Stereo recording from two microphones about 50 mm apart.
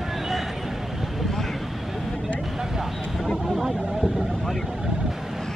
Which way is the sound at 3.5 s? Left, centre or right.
Centre.